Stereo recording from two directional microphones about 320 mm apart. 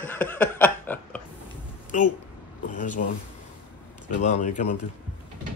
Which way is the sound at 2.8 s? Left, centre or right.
Left.